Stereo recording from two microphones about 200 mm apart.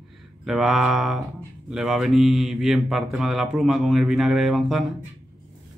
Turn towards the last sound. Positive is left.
turn(degrees=0)  # may be behind; listen again after turning